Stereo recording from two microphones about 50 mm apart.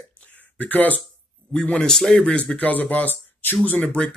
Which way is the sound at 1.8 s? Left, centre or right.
Centre.